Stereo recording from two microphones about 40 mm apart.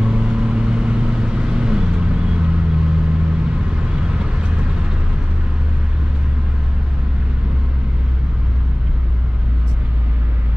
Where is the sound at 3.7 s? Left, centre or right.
Right.